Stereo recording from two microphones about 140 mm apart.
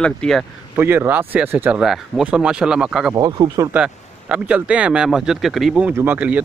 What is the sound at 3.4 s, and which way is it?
Speech, 30° right (ahead or behind).